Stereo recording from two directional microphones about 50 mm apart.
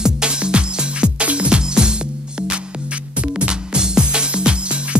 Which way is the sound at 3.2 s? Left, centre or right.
Right.